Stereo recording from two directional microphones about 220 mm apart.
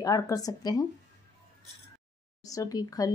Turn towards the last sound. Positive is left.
turn(degrees=15)  # may be behind; listen again after turning